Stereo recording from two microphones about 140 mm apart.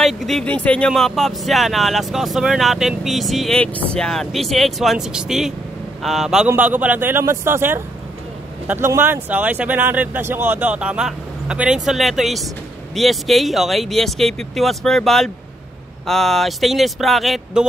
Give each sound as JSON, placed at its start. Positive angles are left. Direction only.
{"t": 0.0, "sound": "speech", "side_deg": 0}